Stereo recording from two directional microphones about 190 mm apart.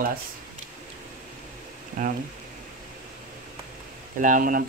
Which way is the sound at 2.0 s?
40° right (ahead or behind).